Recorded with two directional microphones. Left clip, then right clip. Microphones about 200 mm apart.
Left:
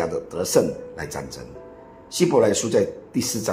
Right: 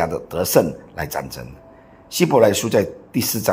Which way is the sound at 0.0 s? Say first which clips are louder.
Right 4 dB; 45° right (ahead or behind).